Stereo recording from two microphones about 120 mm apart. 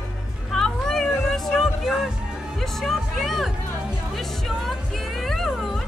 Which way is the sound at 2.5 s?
Centre (ahead or behind).